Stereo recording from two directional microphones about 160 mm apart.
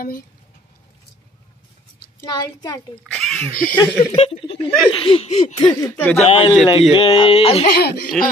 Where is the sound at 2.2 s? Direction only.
25° left (ahead or behind).